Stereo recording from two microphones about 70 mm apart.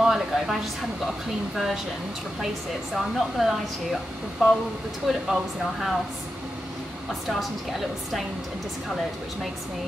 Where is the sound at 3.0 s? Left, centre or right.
Centre.